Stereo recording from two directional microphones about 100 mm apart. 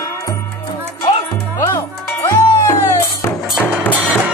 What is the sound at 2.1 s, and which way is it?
Music, 30° left (ahead or behind).